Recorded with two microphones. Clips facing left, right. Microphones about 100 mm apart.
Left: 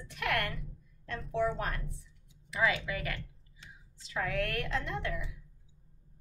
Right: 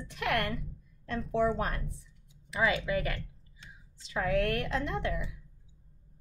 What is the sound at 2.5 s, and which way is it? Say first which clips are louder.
Speech: right 2 dB; 25° right (ahead or behind).